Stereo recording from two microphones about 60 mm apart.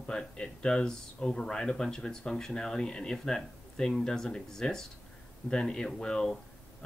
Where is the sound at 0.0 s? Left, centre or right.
Centre.